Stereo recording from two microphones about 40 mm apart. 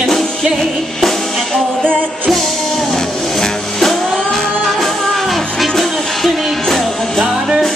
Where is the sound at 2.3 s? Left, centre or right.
Centre.